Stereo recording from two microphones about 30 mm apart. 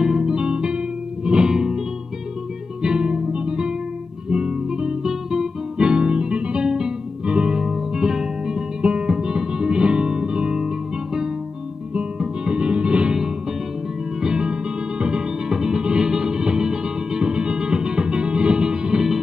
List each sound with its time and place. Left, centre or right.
0.0 s music: centre
1.5 s music: centre
2.8 s music: right
4.3 s guitar: right
5.0 s guitar: centre
5.8 s music: right
7.5 s music: centre
8.8 s music: right
12.2 s music: right
13.1 s music: centre
15.5 s music: centre
15.8 s music: right